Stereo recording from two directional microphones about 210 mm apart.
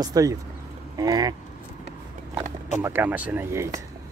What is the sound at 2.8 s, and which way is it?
Speech, 10° right (ahead or behind).